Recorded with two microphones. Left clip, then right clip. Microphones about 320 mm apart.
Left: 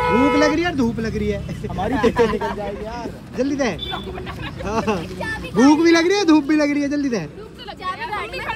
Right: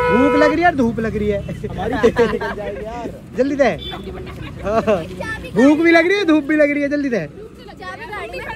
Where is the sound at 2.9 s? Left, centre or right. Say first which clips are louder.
Right 3 dB; centre.